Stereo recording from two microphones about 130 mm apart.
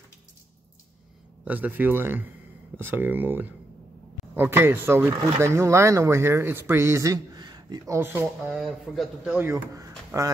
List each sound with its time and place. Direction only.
1.4 s a man's voice: 10° right (ahead or behind)
8.2 s speech: centre (ahead or behind)
9.4 s a man's voice: 15° right (ahead or behind)
9.8 s speech: 25° right (ahead or behind)